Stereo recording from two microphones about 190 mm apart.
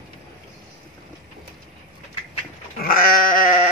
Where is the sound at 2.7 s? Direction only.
50° left (ahead or behind).